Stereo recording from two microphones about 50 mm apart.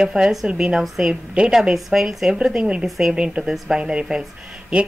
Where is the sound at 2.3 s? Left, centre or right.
Centre.